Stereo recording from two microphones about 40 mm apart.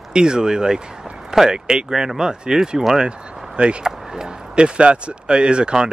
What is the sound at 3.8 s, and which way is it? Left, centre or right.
Speech, centre.